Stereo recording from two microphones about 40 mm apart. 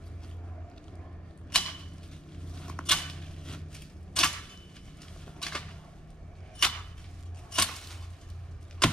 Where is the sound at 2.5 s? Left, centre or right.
Left.